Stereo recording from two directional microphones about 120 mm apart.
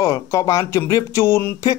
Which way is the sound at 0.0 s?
25° left (ahead or behind).